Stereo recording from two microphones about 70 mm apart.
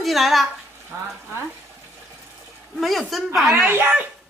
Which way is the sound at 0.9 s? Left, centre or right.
Right.